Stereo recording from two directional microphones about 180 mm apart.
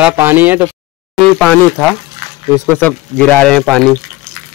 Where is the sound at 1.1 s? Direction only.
5° left (ahead or behind).